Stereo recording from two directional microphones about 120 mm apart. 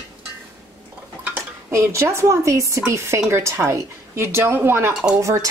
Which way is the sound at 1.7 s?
25° right (ahead or behind).